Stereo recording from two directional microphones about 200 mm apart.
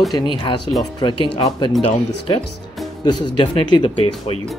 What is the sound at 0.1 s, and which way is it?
Speech, 20° left (ahead or behind).